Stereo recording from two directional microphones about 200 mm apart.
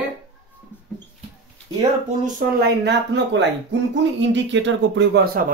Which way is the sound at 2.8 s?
60° right (ahead or behind).